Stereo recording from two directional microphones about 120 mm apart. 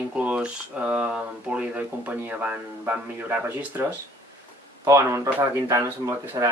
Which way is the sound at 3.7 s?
25° right (ahead or behind).